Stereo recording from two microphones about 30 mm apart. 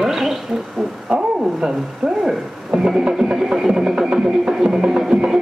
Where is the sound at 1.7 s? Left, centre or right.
Centre.